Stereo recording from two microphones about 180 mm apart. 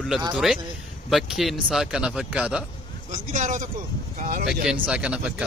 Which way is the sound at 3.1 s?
45° right (ahead or behind).